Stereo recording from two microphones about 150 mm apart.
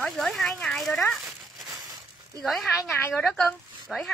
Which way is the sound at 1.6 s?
25° right (ahead or behind).